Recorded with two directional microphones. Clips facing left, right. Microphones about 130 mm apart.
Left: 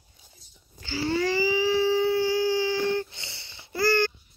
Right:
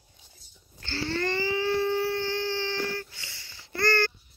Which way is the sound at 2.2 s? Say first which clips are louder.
Left 6 dB; 10° left (ahead or behind).